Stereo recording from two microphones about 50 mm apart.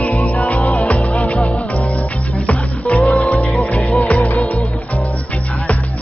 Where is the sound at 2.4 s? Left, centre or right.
Left.